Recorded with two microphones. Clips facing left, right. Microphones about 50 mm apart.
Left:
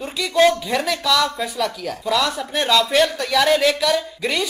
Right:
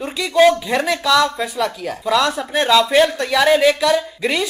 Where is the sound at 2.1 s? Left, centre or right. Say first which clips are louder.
Right 5 dB; centre.